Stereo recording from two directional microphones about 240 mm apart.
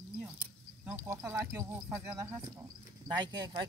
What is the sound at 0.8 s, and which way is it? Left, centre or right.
Speech, centre.